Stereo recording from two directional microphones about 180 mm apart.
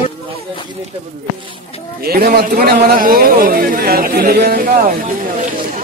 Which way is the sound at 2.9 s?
55° right (ahead or behind).